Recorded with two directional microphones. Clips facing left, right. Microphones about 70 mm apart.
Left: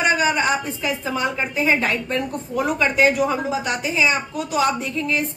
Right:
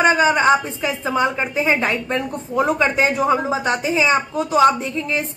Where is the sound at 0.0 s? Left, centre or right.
Right.